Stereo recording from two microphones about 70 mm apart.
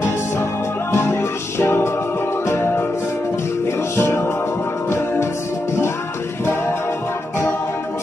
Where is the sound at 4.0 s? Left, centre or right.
Left.